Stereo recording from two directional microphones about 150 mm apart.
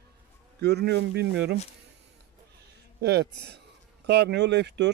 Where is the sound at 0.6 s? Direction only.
90° right.